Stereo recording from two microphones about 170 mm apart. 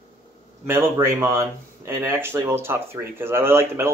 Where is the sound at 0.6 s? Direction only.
15° right (ahead or behind).